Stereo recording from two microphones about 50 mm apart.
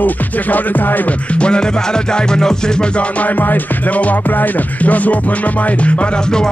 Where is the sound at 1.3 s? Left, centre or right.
Left.